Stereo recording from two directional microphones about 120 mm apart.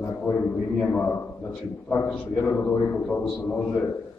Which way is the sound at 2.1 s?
5° left (ahead or behind).